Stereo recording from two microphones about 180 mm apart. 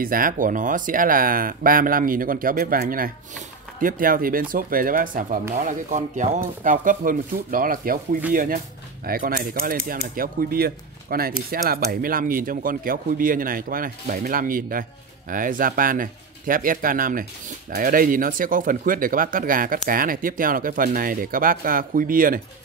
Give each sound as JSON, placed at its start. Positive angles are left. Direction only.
{"t": 0.0, "sound": "speech", "side_deg": -50}